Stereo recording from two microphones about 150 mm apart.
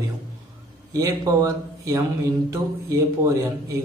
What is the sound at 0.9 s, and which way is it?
A man's voice, 20° right (ahead or behind).